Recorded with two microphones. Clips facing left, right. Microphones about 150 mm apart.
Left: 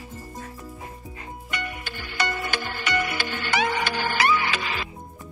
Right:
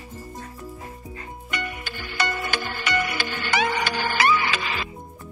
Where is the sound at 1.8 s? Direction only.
90° right.